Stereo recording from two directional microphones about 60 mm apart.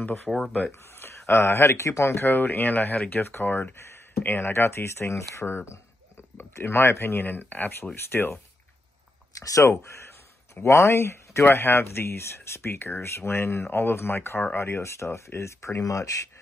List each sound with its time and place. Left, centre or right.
0.3 s speech: centre
0.8 s speech: left
9.3 s speech: left
9.7 s speech: left
15.8 s speech: left